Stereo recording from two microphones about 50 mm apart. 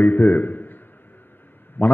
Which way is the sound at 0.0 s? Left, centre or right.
Left.